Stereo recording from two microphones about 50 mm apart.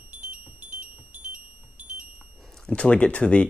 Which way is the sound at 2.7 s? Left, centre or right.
Left.